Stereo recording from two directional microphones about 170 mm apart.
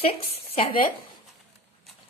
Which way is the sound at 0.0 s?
35° left (ahead or behind).